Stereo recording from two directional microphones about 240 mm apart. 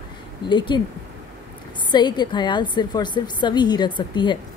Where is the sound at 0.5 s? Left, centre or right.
Centre.